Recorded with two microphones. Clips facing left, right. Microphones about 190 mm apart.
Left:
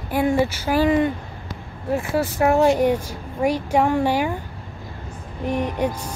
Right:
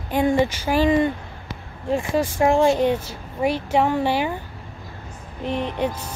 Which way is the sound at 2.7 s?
10° left (ahead or behind).